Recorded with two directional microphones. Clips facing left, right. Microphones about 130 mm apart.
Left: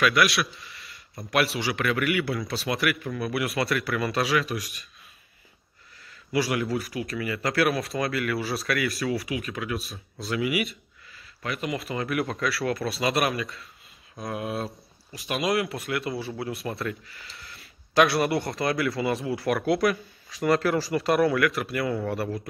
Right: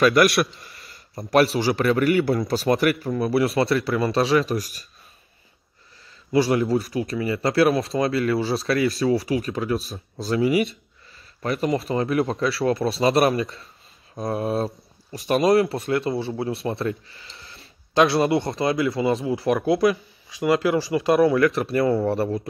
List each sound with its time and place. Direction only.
0.0 s a man's voice: 45° right (ahead or behind)
1.3 s a man's voice: 35° right (ahead or behind)
6.3 s a man's voice: 25° right (ahead or behind)